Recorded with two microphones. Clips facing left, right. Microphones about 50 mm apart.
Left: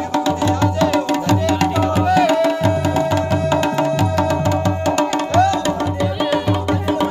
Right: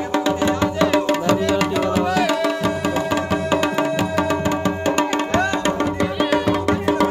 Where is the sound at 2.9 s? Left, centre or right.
Centre.